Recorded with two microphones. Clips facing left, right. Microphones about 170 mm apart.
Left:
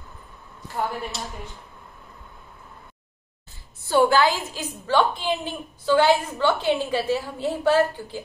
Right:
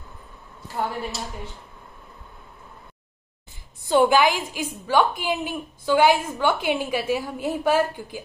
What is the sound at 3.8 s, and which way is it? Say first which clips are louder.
A woman's voice: right 1 dB; 15° right (ahead or behind).